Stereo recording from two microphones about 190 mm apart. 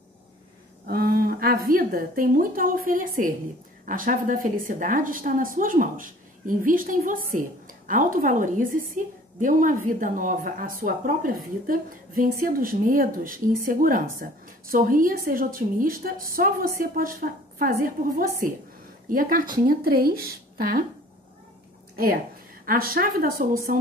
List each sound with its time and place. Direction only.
0.8 s a woman's voice: 55° right (ahead or behind)
21.9 s a woman's voice: 50° right (ahead or behind)